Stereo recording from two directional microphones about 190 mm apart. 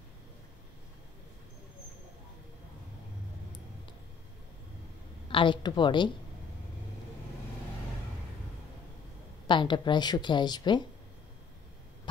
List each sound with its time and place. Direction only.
5.3 s a woman's voice: 25° left (ahead or behind)
9.5 s a woman's voice: 25° left (ahead or behind)